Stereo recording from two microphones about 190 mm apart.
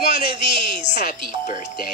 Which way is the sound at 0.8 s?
40° left (ahead or behind).